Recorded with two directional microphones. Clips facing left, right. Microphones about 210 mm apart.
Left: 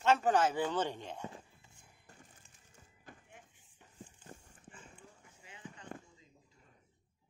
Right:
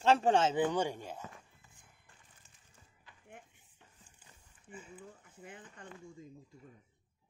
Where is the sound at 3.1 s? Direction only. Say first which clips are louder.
Left 10 dB; 45° left (ahead or behind).